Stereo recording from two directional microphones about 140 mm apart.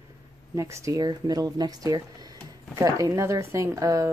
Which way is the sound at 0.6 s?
20° right (ahead or behind).